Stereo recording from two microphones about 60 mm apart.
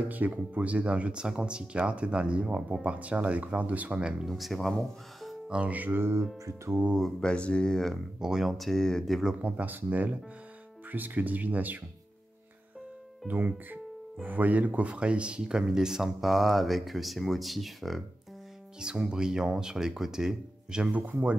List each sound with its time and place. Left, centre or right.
0.1 s speech: right
4.3 s speech: centre
5.5 s speech: right
7.2 s speech: centre
7.9 s speech: centre
9.4 s speech: right
14.2 s speech: right; by 18.0 s centre
18.8 s speech: centre